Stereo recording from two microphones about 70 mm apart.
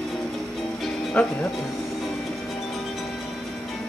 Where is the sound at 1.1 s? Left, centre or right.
Centre.